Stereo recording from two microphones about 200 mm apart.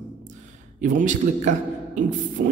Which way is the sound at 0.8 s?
40° right (ahead or behind).